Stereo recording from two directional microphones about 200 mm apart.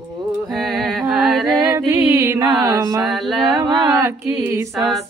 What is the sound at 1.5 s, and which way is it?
Music, 15° right (ahead or behind).